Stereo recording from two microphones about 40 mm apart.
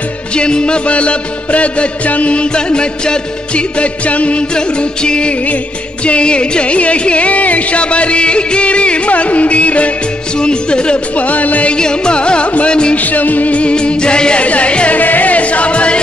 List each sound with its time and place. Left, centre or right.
0.3 s music: left
4.6 s music: left
10.4 s music: left
11.1 s music: left
11.7 s music: left
12.9 s music: left
13.6 s music: left
14.4 s music: left
15.0 s music: left